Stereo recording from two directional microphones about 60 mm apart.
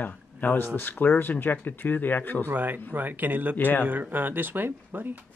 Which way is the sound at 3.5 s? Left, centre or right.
Left.